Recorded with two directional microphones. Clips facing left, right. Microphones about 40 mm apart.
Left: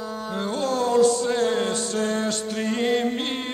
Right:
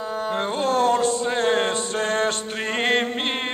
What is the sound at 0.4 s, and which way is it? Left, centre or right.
Mantra, right.